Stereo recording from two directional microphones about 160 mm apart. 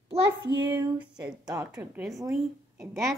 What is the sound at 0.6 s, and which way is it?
Speech, 15° right (ahead or behind).